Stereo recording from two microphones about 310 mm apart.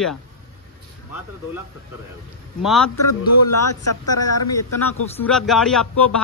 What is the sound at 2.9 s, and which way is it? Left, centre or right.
A man's voice, left.